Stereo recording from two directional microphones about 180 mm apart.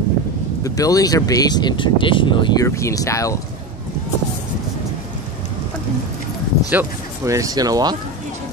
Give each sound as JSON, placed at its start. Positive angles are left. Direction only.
{"t": 0.7, "sound": "speech", "side_deg": 20}
{"t": 6.7, "sound": "speech", "side_deg": -15}